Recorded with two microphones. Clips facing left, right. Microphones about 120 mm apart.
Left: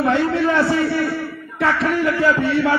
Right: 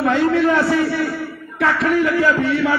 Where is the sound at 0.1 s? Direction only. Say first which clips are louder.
Right 2 dB; 30° left (ahead or behind).